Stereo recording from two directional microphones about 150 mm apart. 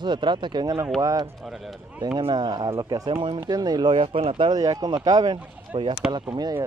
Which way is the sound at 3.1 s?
35° right (ahead or behind).